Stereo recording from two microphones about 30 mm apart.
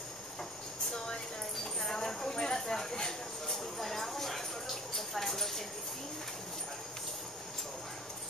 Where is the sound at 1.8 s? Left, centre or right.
Centre.